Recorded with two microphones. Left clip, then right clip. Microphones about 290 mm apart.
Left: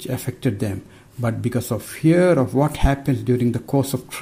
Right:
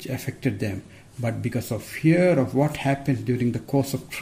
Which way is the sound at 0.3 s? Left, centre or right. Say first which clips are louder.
Left 2 dB; left.